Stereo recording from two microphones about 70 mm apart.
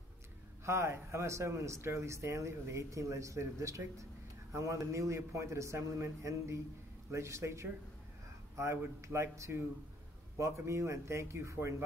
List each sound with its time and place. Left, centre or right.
0.7 s speech: right